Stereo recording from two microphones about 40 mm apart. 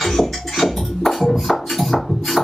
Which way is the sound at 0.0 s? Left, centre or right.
Centre.